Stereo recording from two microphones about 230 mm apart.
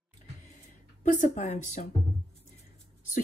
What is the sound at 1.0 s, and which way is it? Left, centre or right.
Speech, left.